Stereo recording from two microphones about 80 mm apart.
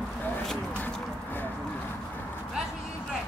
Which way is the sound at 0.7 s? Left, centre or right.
Left.